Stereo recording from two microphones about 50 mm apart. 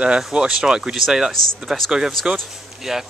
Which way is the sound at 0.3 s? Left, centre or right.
Centre.